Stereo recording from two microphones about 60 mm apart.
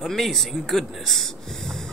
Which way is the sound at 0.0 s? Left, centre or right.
Centre.